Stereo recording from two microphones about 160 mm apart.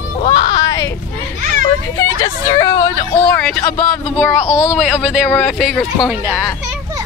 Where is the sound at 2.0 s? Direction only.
20° left (ahead or behind).